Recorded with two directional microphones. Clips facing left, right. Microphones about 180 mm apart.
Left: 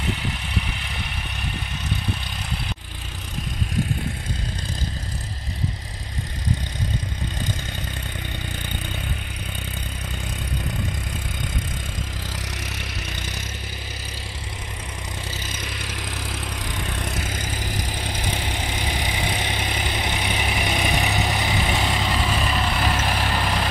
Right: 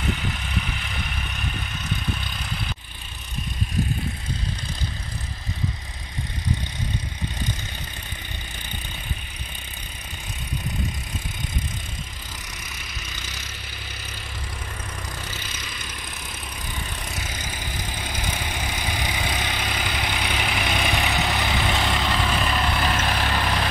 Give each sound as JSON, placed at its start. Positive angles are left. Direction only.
{"t": 17.0, "sound": "vehicle", "side_deg": 55}